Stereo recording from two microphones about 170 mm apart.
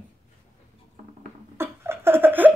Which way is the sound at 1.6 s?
15° right (ahead or behind).